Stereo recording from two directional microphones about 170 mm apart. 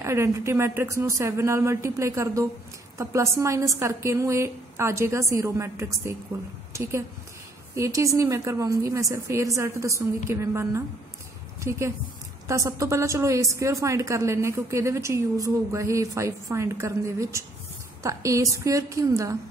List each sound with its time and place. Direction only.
0.0 s a woman's voice: 15° right (ahead or behind)